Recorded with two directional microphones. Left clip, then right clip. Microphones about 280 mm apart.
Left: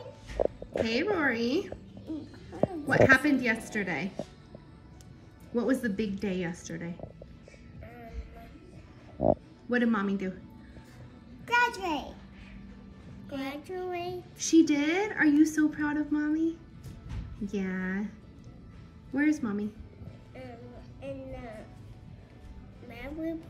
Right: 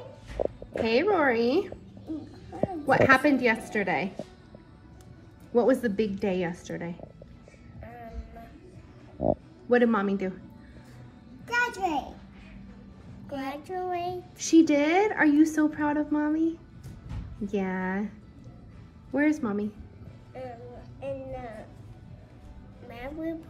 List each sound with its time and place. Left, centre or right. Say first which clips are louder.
0.8 s a child's voice: right 6 dB; centre
5.5 s a child's voice: right 6 dB; centre
7.8 s music: right 4 dB; centre
9.2 s speech: left 1 dB; centre
9.7 s a woman's voice: right 6 dB; centre
11.4 s a sound: left 1 dB; centre
13.3 s a child's voice: right 3 dB; centre
19.1 s a child's voice: right 3 dB; centre
20.4 s music: right 7 dB; centre
21.0 s a sound: right 5 dB; centre
22.8 s music: right 2 dB; centre